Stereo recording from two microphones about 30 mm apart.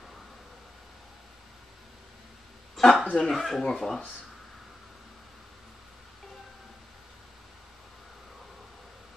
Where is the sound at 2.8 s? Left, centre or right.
Centre.